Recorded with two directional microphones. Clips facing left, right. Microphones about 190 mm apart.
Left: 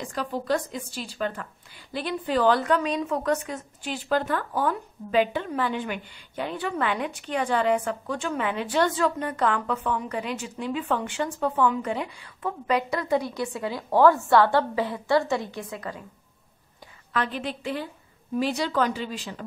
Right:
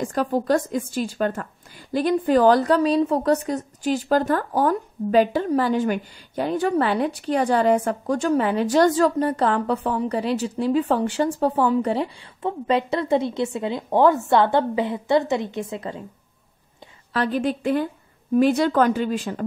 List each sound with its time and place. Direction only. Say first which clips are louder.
0.0 s a woman's voice: right 8 dB; 45° right (ahead or behind); by 16.0 s 25° right (ahead or behind)
17.1 s speech: right 7 dB; 40° right (ahead or behind)